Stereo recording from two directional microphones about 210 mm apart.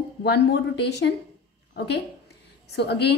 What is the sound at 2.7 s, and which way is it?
Speech, 50° left (ahead or behind).